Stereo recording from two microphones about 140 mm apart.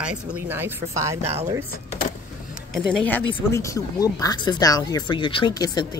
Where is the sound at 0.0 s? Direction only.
10° right (ahead or behind).